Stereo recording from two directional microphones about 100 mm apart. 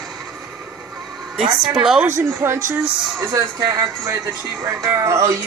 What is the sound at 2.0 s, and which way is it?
Speech, 25° right (ahead or behind).